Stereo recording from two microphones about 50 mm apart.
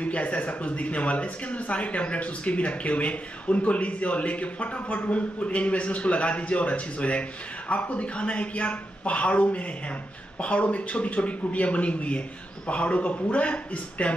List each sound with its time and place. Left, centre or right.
0.0 s speech: left